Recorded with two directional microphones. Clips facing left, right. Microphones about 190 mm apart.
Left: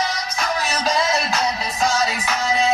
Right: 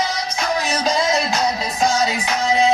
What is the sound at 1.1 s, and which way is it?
Music, 35° right (ahead or behind).